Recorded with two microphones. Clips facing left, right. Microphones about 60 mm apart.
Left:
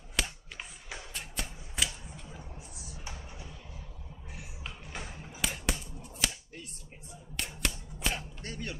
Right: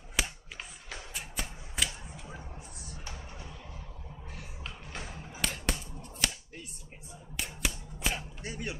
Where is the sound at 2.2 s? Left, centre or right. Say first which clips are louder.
Right 4 dB; centre.